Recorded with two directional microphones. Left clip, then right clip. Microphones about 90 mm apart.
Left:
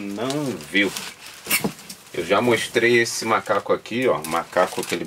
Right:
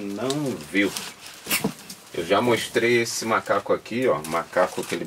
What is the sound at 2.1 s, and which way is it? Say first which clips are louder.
Speech: left 2 dB; 10° left (ahead or behind).